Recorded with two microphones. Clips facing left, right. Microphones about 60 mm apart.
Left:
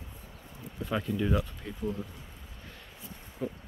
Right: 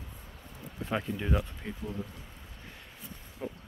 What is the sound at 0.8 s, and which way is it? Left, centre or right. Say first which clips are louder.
Speech: left 2 dB; right.